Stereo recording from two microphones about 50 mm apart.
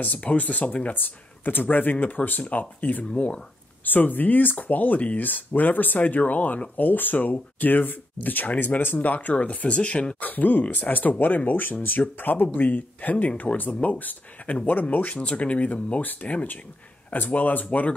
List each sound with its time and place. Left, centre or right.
0.0 s speech: left
0.9 s speech: left
3.1 s speech: left
3.8 s speech: left
10.2 s speech: left